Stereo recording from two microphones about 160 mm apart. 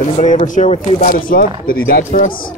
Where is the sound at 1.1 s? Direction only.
60° left (ahead or behind).